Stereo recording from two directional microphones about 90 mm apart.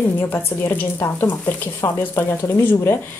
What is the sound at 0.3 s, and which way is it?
A woman's voice, 25° left (ahead or behind).